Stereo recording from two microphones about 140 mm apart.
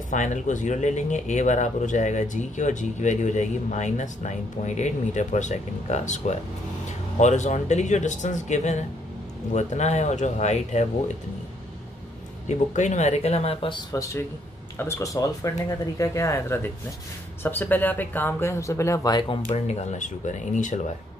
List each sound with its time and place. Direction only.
0.1 s speech: 60° left (ahead or behind)
12.4 s speech: 55° left (ahead or behind); by 13.8 s 40° left (ahead or behind)
13.9 s speech: 20° left (ahead or behind); by 20.8 s 60° left (ahead or behind)